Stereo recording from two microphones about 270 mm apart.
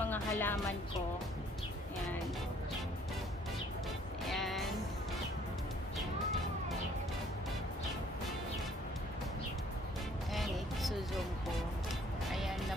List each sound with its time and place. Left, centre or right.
0.1 s music: centre
4.3 s music: centre
10.3 s music: centre